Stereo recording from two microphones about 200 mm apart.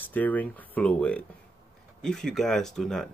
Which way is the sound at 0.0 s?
10° left (ahead or behind).